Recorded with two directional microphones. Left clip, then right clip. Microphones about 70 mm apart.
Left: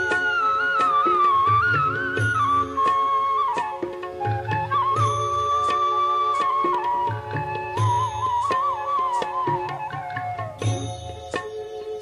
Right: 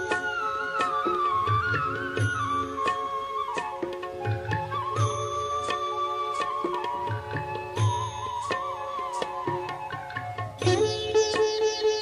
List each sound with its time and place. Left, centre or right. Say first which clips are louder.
0.0 s music: left 7 dB; left
5.0 s music: left 7 dB; left